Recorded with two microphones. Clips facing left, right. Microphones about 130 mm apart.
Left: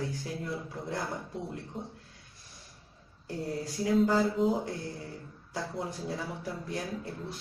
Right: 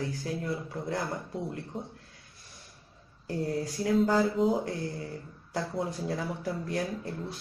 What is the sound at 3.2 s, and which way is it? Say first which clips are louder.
Speech: right 4 dB; centre (ahead or behind).